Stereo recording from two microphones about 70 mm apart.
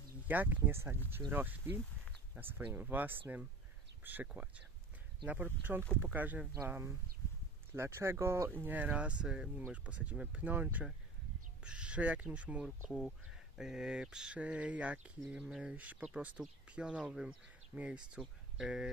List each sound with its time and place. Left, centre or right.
0.3 s speech: right
6.6 s speech: right
8.5 s speech: right
12.9 s speech: centre